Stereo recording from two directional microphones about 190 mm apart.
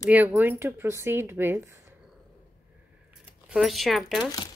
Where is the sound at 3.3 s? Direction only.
5° right (ahead or behind).